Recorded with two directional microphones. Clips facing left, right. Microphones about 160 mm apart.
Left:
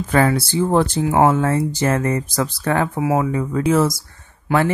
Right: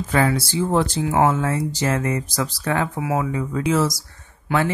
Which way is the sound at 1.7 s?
50° left (ahead or behind).